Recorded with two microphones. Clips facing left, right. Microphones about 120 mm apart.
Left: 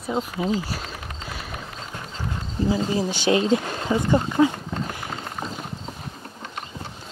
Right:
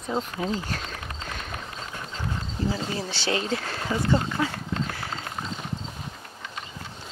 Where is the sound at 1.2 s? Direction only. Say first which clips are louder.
Left 2 dB; 5° left (ahead or behind).